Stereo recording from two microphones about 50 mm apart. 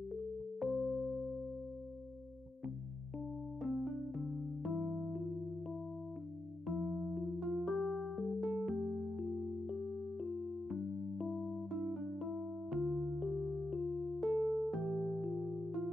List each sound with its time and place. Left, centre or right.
0.1 s music: centre
3.6 s music: centre
6.7 s music: centre